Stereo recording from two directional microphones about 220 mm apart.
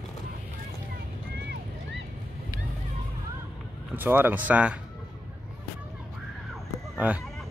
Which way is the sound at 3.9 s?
10° right (ahead or behind).